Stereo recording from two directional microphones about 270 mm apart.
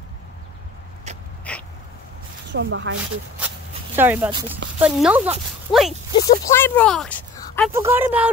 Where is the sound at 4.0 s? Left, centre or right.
Centre.